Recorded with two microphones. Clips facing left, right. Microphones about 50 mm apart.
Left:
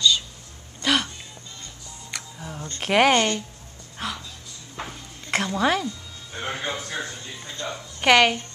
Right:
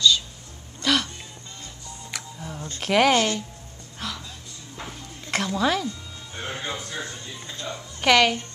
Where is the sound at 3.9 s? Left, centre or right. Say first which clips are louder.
Left 2 dB; left.